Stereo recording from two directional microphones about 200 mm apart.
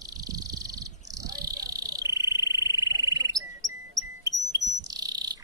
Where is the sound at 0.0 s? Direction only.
20° right (ahead or behind).